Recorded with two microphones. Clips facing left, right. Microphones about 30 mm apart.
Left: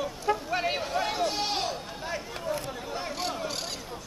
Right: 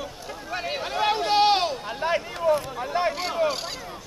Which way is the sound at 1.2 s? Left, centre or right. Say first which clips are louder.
Right 9 dB; right.